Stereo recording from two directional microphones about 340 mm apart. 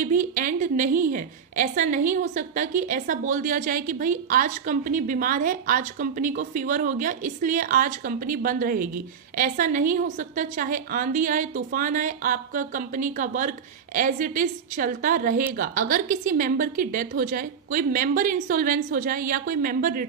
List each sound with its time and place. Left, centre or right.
0.0 s a woman's voice: right